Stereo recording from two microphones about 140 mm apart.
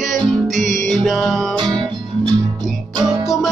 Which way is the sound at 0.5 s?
65° right (ahead or behind).